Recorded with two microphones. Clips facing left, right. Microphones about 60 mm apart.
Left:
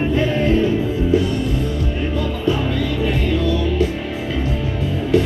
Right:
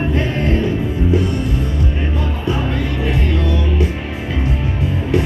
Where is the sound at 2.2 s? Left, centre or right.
Right.